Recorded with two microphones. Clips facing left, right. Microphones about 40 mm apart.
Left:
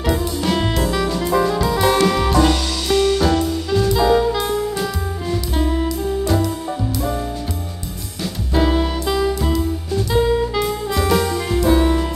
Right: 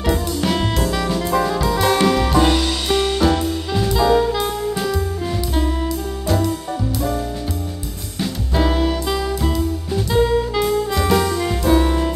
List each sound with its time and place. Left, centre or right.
0.0 s music: centre
2.3 s music: centre
3.9 s jazz: centre
5.5 s music: centre
8.5 s music: centre